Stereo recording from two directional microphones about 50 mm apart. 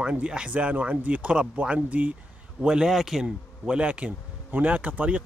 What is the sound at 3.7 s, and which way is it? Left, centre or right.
Speech, right.